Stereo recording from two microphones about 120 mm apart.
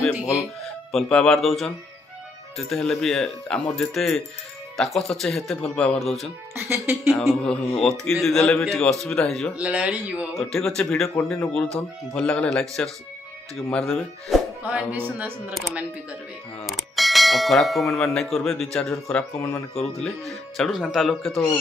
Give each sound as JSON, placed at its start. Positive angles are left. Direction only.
{"t": 0.9, "sound": "speech", "side_deg": 5}
{"t": 6.5, "sound": "speech", "side_deg": -20}
{"t": 7.1, "sound": "speech", "side_deg": 5}
{"t": 9.6, "sound": "speech", "side_deg": -10}
{"t": 10.3, "sound": "speech", "side_deg": 5}
{"t": 14.6, "sound": "speech", "side_deg": -10}
{"t": 16.6, "sound": "bell", "side_deg": 0}
{"t": 19.3, "sound": "speech", "side_deg": 25}
{"t": 20.0, "sound": "speech", "side_deg": 5}